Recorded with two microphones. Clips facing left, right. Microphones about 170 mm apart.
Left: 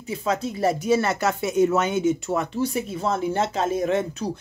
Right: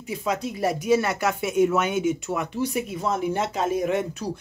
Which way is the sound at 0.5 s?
10° right (ahead or behind).